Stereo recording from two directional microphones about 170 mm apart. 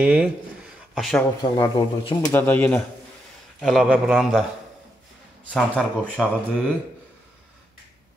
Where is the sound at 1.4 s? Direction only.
25° left (ahead or behind).